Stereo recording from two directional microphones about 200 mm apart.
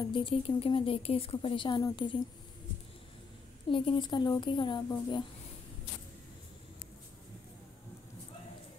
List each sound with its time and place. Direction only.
0.1 s speech: 25° left (ahead or behind)
3.7 s speech: 25° left (ahead or behind)